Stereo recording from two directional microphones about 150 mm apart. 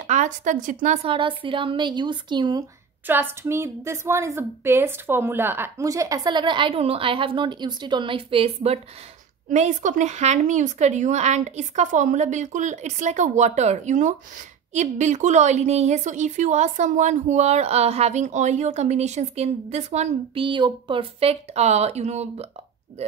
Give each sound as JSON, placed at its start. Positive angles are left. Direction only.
{"t": 0.0, "sound": "speech", "side_deg": -55}
{"t": 1.0, "sound": "a woman's voice", "side_deg": -35}
{"t": 3.1, "sound": "a woman's voice", "side_deg": -15}
{"t": 9.5, "sound": "a woman's voice", "side_deg": -55}
{"t": 20.4, "sound": "a woman's voice", "side_deg": -30}